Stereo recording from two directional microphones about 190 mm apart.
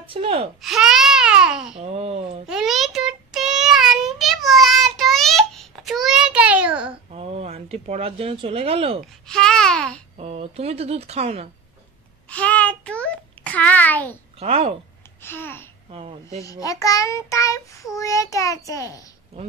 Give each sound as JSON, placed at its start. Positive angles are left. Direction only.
{"t": 0.0, "sound": "speech", "side_deg": -30}
{"t": 0.6, "sound": "babbling", "side_deg": 0}
{"t": 1.8, "sound": "speech", "side_deg": -35}
{"t": 2.4, "sound": "child singing", "side_deg": 0}
{"t": 7.1, "sound": "speech", "side_deg": -30}
{"t": 9.3, "sound": "a sound", "side_deg": 5}
{"t": 10.1, "sound": "speech", "side_deg": -35}
{"t": 12.3, "sound": "a sound", "side_deg": 5}
{"t": 14.4, "sound": "speech", "side_deg": -35}
{"t": 15.2, "sound": "child singing", "side_deg": 10}
{"t": 15.9, "sound": "speech", "side_deg": -35}
{"t": 16.4, "sound": "child singing", "side_deg": 15}